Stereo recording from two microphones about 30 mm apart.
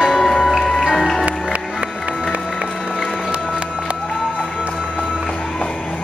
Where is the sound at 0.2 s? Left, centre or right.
Centre.